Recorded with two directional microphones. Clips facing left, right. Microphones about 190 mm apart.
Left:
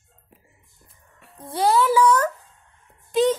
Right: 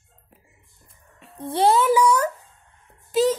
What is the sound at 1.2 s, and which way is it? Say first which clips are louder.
A child's voice: right 3 dB; 25° right (ahead or behind).